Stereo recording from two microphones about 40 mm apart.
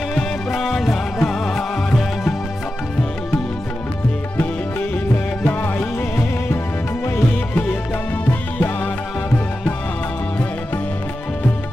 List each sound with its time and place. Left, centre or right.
0.6 s music: centre
5.8 s music: left
8.3 s music: left